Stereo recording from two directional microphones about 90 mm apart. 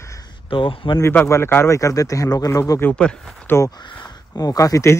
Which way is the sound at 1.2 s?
30° left (ahead or behind).